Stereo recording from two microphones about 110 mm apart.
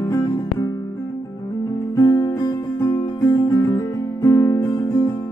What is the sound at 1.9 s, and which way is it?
Music, 35° left (ahead or behind).